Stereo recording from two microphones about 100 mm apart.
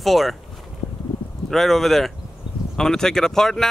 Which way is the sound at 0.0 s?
Centre (ahead or behind).